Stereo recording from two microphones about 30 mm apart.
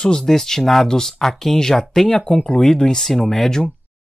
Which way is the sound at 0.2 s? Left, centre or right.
Centre.